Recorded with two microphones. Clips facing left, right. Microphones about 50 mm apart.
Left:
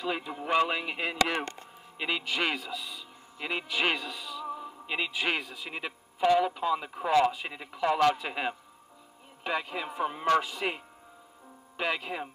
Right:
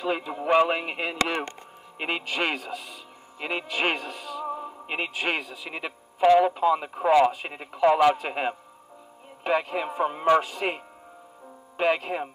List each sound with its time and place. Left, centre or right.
0.0 s a man's voice: right
4.5 s music: right
4.9 s a man's voice: right